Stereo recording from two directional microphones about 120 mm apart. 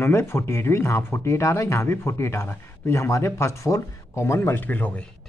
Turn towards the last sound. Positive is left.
turn(degrees=15)  # may be behind; listen again after turning